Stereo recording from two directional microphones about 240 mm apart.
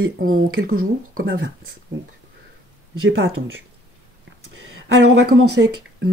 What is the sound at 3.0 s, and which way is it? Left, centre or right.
Speech, right.